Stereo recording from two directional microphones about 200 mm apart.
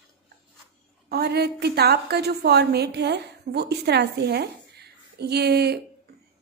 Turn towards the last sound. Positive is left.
turn(degrees=-55)  # may be behind; listen again after turning